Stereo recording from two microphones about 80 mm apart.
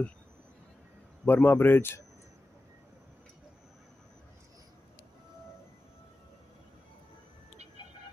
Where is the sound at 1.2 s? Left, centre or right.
Left.